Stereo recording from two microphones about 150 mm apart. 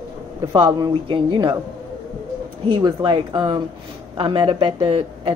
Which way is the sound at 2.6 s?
35° right (ahead or behind).